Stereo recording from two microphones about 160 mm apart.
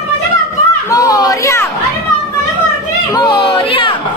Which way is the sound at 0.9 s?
25° left (ahead or behind).